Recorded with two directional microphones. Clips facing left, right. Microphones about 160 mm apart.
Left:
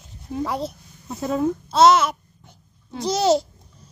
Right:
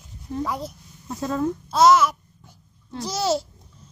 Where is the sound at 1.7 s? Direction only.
70° left (ahead or behind).